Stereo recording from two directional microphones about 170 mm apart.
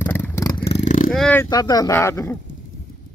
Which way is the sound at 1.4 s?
25° left (ahead or behind).